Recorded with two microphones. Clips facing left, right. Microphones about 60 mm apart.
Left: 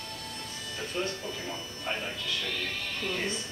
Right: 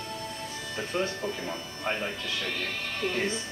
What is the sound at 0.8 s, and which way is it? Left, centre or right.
Speech, right.